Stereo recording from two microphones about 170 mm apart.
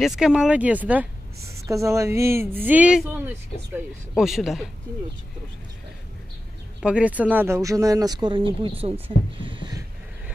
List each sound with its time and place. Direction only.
0.0 s speech: centre (ahead or behind)
4.2 s speech: 5° right (ahead or behind)
6.8 s speech: 5° right (ahead or behind); by 8.9 s 30° right (ahead or behind)
9.4 s a sound: 30° right (ahead or behind)